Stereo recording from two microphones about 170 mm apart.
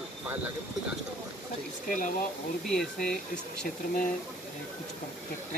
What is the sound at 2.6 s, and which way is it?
Speech, centre (ahead or behind).